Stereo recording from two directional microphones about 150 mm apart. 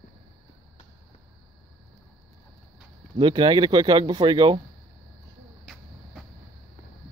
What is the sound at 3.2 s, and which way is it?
Speech, 30° right (ahead or behind).